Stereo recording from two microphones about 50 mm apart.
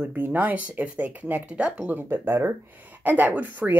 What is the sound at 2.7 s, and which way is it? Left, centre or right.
Speech, right.